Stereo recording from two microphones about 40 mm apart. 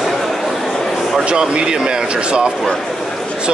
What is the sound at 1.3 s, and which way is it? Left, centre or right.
Speech, right.